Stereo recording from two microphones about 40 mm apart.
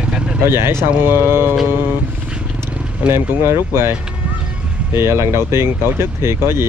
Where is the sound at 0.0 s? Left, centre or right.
Right.